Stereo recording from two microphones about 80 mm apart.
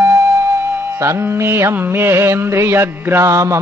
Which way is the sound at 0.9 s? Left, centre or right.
Right.